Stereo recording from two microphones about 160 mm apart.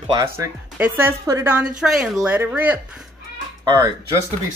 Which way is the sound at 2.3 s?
10° right (ahead or behind).